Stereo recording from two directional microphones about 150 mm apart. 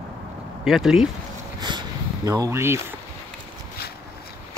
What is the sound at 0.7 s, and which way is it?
Speech, centre (ahead or behind).